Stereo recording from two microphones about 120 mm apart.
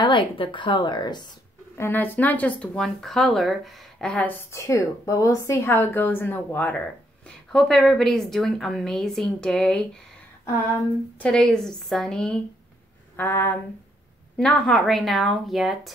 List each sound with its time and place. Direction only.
0.0 s speech: 40° left (ahead or behind)
1.8 s speech: 15° left (ahead or behind)
7.5 s a woman's voice: centre (ahead or behind)
11.1 s a woman's voice: 5° left (ahead or behind)
13.1 s a sound: 20° left (ahead or behind)
14.3 s a woman's voice: 5° left (ahead or behind)